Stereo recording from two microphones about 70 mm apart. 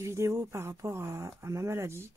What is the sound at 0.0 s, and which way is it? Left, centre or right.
Speech, right.